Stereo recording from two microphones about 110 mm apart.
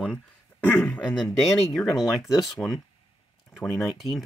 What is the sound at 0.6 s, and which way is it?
Speech, 15° left (ahead or behind).